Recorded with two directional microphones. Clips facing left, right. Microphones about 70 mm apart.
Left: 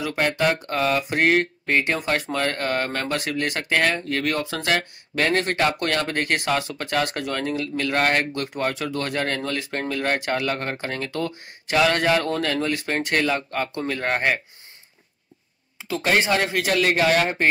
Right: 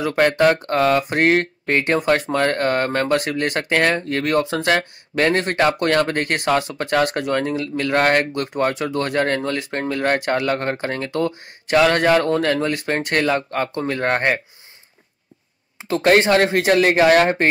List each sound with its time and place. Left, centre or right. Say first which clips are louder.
0.0 s speech: right 6 dB; right
16.4 s speech: right 5 dB; right